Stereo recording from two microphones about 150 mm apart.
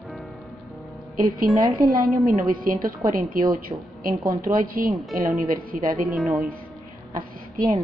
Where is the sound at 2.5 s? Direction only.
70° right (ahead or behind).